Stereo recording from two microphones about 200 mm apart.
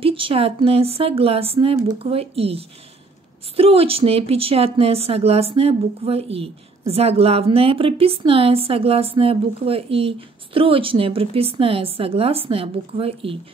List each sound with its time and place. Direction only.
0.0 s speech: 25° right (ahead or behind)